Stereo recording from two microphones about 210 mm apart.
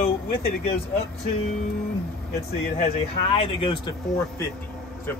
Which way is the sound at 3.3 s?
25° left (ahead or behind).